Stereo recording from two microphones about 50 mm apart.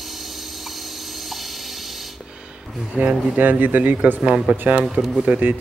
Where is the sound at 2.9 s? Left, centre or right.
Right.